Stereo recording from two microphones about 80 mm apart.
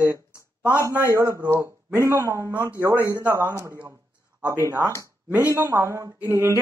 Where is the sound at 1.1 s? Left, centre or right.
Right.